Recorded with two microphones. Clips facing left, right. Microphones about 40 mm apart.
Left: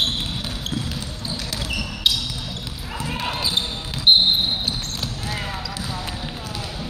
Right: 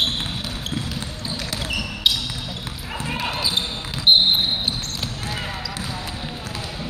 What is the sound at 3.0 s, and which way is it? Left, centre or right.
Basketball bounce, centre.